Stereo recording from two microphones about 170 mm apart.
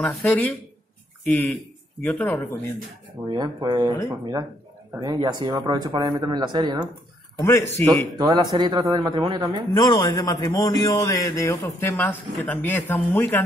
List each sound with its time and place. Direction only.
0.0 s speech: 10° left (ahead or behind)
3.3 s speech: 25° right (ahead or behind)
5.0 s speech: 25° right (ahead or behind)
7.3 s speech: 15° left (ahead or behind)
8.2 s speech: 25° right (ahead or behind)
9.8 s a man's voice: 20° left (ahead or behind)